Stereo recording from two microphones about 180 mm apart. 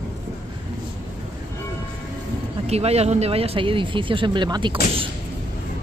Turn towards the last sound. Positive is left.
turn(degrees=-25)  # may be behind; listen again after turning